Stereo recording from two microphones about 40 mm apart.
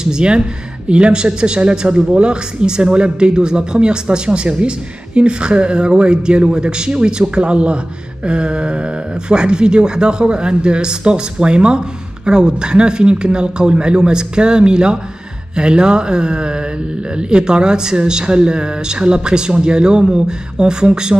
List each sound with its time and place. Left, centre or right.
0.0 s a man's voice: right